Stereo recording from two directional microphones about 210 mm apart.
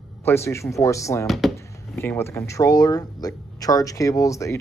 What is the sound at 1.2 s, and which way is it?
Speech, centre (ahead or behind).